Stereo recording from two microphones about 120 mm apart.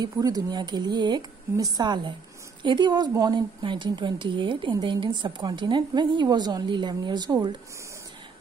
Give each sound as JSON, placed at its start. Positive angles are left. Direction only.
{"t": 0.0, "sound": "a woman's voice", "side_deg": -30}